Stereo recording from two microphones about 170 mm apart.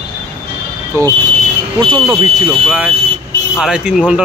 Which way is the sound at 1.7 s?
30° right (ahead or behind).